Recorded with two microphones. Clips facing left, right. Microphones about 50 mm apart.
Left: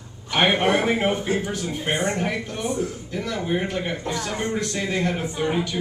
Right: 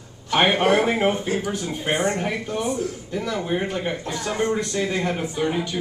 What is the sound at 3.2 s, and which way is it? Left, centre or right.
A man's voice, centre.